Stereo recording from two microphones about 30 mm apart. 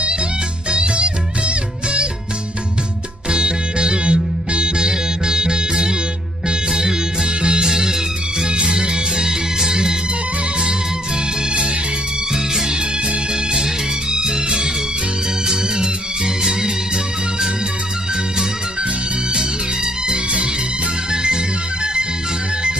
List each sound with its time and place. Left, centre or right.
0.7 s music: right
3.3 s music: right
12.3 s music: right
19.3 s music: right
20.2 s music: right
21.1 s music: right